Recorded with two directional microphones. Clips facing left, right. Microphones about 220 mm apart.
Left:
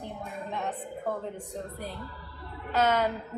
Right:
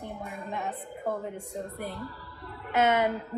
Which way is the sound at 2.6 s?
15° right (ahead or behind).